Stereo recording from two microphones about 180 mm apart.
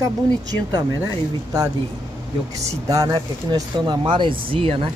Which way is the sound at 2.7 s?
20° right (ahead or behind).